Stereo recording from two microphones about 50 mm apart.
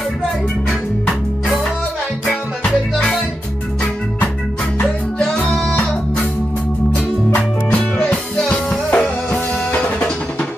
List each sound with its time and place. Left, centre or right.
7.3 s music: left